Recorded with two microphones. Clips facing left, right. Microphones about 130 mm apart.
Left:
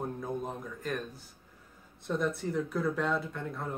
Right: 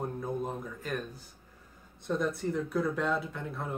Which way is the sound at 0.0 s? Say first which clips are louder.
Right 1 dB; centre (ahead or behind).